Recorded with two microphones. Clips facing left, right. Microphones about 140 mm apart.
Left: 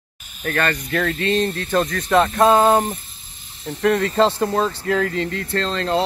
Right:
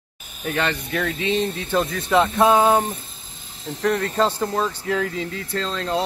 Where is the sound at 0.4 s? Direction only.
10° right (ahead or behind).